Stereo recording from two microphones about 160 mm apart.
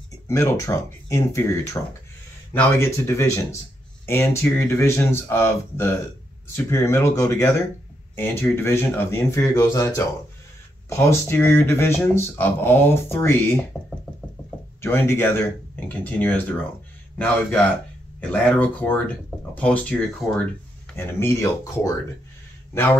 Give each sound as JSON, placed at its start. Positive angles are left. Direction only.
{"t": 0.3, "sound": "speech", "side_deg": 20}
{"t": 14.8, "sound": "speech", "side_deg": 15}